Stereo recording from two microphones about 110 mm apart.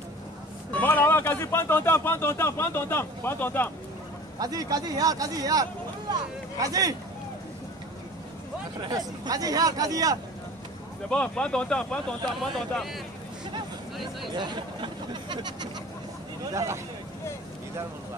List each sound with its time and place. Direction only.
0.7 s speech: 15° left (ahead or behind)
4.4 s speech: 35° right (ahead or behind)
8.8 s speech: 35° right (ahead or behind)
11.1 s speech: 10° left (ahead or behind)
14.3 s speech: 45° right (ahead or behind)
16.5 s speech: 25° right (ahead or behind)